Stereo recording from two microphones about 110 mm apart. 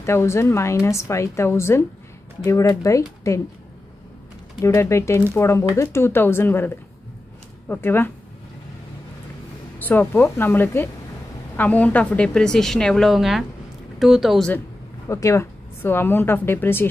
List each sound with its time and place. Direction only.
0.0 s speech: 25° left (ahead or behind)
4.6 s speech: 25° left (ahead or behind)
9.8 s a woman's voice: 15° left (ahead or behind); by 14.5 s centre (ahead or behind)
15.0 s speech: 30° left (ahead or behind)